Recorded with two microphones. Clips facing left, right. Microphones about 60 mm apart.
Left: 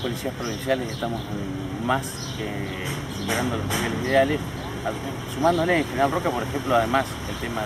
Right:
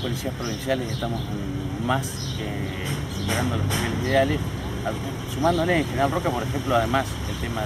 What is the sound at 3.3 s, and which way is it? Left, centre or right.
Speech, centre.